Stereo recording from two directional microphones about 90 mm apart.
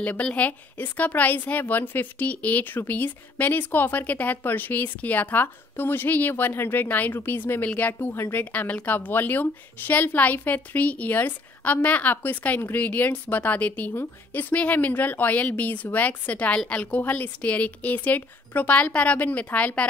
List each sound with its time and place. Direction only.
0.0 s a woman's voice: 15° left (ahead or behind)